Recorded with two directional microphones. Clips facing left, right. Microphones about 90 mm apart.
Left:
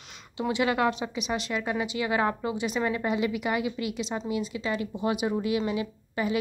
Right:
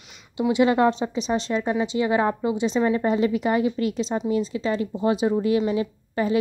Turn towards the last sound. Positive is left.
turn(degrees=-35)  # may be behind; listen again after turning